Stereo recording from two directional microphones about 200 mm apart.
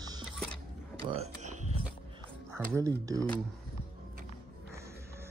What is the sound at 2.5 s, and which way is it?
Speech, 15° right (ahead or behind).